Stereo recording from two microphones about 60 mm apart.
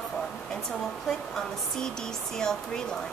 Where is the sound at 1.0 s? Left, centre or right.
Centre.